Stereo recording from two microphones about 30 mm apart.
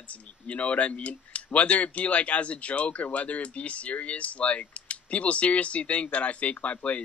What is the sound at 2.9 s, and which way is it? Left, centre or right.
Speech, left.